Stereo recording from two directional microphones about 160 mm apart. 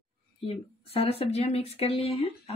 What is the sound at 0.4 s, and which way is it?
Speech, 35° left (ahead or behind).